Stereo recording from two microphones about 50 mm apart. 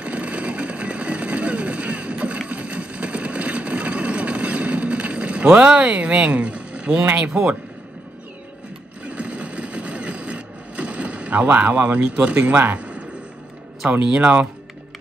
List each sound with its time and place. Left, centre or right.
0.0 s vehicle: right
7.2 s a man's voice: centre
9.0 s a sound: right
14.0 s speech: right